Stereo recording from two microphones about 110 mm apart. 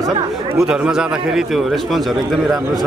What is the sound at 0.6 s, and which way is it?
A man's voice, 5° right (ahead or behind).